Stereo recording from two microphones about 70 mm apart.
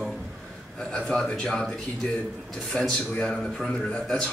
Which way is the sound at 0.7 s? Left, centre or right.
Centre.